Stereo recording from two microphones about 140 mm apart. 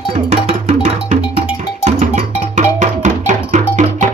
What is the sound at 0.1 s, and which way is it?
Music, 50° right (ahead or behind).